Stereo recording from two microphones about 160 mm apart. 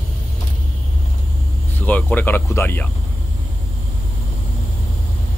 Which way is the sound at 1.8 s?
10° left (ahead or behind).